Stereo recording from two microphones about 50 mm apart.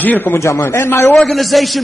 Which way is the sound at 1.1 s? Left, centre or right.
Centre.